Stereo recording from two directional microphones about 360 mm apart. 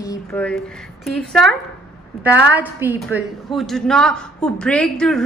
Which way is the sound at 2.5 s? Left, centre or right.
Centre.